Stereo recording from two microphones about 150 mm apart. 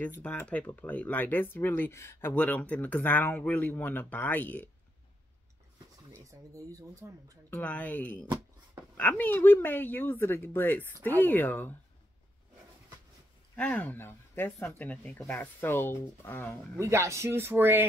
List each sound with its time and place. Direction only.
0.2 s speech: 10° left (ahead or behind)
6.1 s speech: 20° right (ahead or behind)
7.5 s speech: 10° left (ahead or behind)
13.6 s speech: 10° left (ahead or behind)
16.7 s speech: 20° right (ahead or behind)